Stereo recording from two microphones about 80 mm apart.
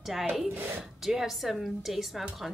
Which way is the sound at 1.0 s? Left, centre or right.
Centre.